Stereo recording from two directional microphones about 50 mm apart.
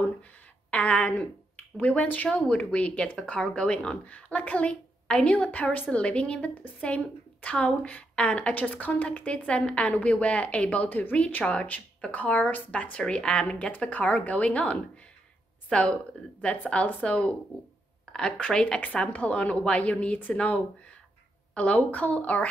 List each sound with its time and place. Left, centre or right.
0.7 s a woman's voice: left
12.9 s a woman's voice: centre
18.1 s a woman's voice: centre